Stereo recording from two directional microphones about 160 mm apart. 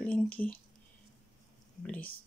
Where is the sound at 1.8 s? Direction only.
10° left (ahead or behind).